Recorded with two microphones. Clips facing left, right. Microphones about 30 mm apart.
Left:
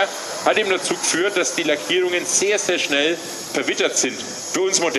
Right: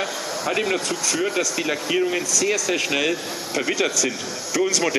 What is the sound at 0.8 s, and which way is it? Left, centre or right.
Speech, centre.